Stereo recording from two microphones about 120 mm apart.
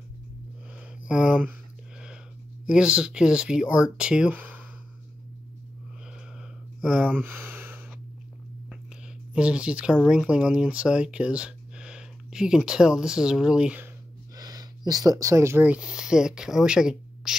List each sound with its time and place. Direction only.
1.0 s speech: 10° right (ahead or behind)
2.6 s speech: 5° right (ahead or behind)
6.8 s speech: 10° right (ahead or behind)
9.3 s speech: 10° right (ahead or behind)
14.3 s a sound: 30° right (ahead or behind)
14.9 s speech: 30° right (ahead or behind); by 17.4 s 5° right (ahead or behind)